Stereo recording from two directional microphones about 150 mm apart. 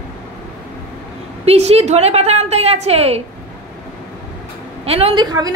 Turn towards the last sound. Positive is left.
turn(degrees=-40)  # may be behind; listen again after turning